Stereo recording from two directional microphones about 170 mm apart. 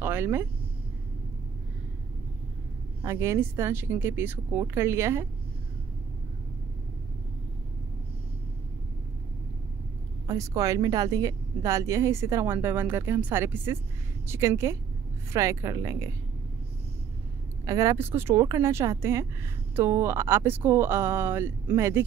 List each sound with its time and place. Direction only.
0.0 s speech: 15° right (ahead or behind)
3.1 s speech: 15° right (ahead or behind)
10.2 s a woman's voice: 20° right (ahead or behind)
17.6 s speech: 20° right (ahead or behind)